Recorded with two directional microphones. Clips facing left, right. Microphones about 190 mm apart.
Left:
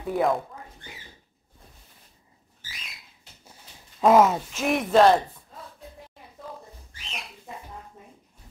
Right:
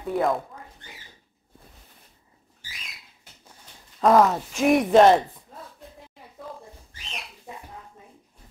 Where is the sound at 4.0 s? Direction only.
Centre (ahead or behind).